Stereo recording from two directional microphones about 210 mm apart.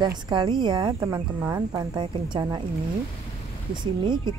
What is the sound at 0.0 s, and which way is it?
Speech, 20° right (ahead or behind).